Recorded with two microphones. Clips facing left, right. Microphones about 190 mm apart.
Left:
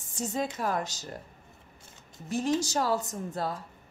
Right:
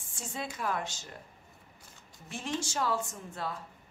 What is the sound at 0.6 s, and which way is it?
Speech, 40° left (ahead or behind).